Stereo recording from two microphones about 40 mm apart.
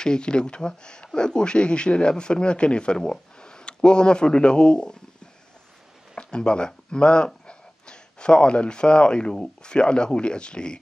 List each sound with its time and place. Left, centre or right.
0.0 s speech: left
6.1 s speech: left